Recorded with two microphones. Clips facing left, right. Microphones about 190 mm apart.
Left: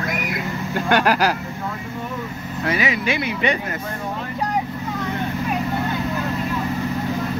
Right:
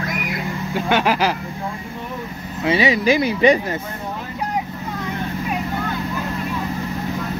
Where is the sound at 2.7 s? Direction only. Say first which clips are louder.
Right 6 dB; 30° right (ahead or behind).